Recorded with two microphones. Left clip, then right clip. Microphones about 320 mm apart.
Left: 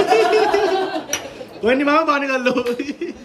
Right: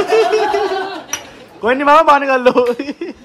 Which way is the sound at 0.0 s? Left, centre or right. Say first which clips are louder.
Right 2 dB; centre.